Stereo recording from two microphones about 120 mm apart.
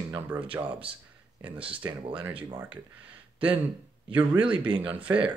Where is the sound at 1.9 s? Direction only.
45° right (ahead or behind).